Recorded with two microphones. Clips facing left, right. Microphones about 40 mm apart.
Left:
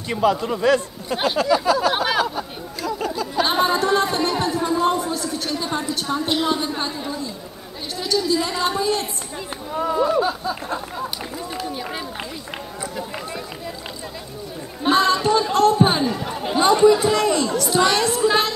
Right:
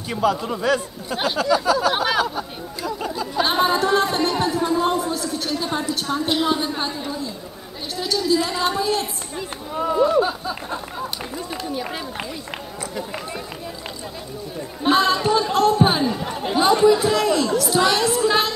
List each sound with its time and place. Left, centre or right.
0.1 s a man's voice: centre
1.1 s a sound: centre
2.8 s speech: centre
8.0 s a sound: centre
9.8 s speech: centre
14.8 s speech: centre